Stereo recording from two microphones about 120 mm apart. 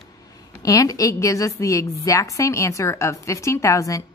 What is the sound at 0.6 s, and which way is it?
A woman's voice, 30° left (ahead or behind).